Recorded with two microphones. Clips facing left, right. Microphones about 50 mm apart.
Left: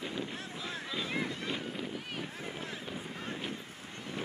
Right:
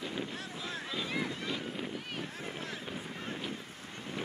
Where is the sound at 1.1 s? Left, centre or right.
Centre.